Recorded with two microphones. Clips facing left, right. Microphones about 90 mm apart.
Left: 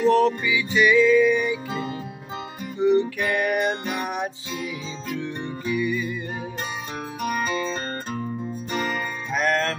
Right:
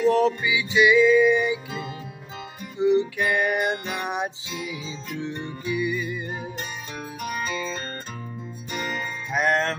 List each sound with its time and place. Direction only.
0.1 s music: 15° right (ahead or behind)
1.7 s music: 25° left (ahead or behind)
2.8 s music: 20° right (ahead or behind)
5.7 s music: 20° right (ahead or behind)
7.2 s music: 50° left (ahead or behind)
9.3 s music: 15° right (ahead or behind)